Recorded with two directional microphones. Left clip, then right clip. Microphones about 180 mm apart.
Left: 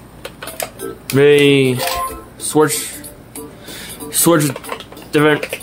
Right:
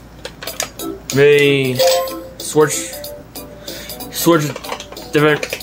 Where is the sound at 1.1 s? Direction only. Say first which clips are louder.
Left 1 dB; 25° left (ahead or behind).